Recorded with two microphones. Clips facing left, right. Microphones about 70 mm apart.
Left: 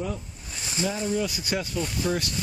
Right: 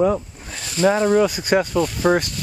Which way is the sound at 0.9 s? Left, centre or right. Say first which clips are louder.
Right 11 dB; right.